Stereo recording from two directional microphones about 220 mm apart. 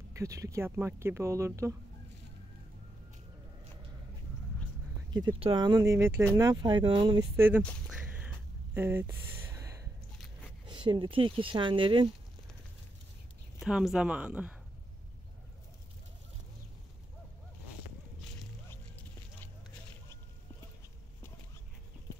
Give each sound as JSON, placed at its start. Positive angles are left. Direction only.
{"t": 0.1, "sound": "speech", "side_deg": -15}
{"t": 5.1, "sound": "speech", "side_deg": -20}
{"t": 7.3, "sound": "speech", "side_deg": -10}
{"t": 8.1, "sound": "a sound", "side_deg": -5}
{"t": 10.7, "sound": "speech", "side_deg": -20}
{"t": 13.6, "sound": "speech", "side_deg": 0}